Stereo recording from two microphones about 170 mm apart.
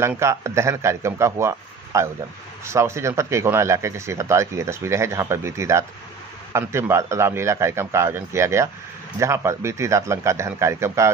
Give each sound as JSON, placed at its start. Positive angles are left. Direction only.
{"t": 0.0, "sound": "speech", "side_deg": -15}